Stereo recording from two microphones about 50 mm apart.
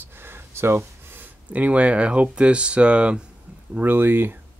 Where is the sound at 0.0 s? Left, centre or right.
Right.